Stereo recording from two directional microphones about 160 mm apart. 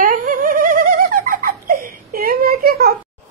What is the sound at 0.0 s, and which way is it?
Giggle, 60° right (ahead or behind).